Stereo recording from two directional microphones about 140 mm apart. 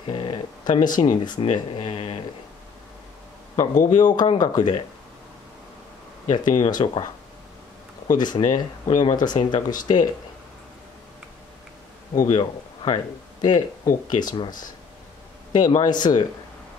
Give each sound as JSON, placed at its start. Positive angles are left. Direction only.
{"t": 0.1, "sound": "speech", "side_deg": 35}
{"t": 3.5, "sound": "speech", "side_deg": 30}
{"t": 6.2, "sound": "speech", "side_deg": 30}
{"t": 8.1, "sound": "speech", "side_deg": 30}
{"t": 12.2, "sound": "a man's voice", "side_deg": 30}